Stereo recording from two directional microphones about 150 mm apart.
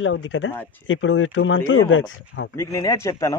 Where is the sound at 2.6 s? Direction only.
20° left (ahead or behind).